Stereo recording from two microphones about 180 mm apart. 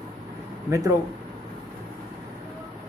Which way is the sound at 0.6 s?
15° right (ahead or behind).